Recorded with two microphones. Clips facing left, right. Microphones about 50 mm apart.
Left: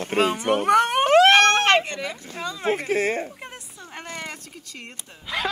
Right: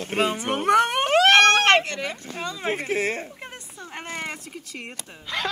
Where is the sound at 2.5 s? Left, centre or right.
Centre.